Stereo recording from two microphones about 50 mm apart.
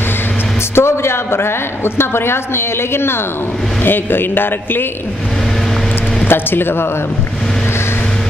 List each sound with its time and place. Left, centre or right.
0.7 s a woman's voice: left
6.2 s speech: left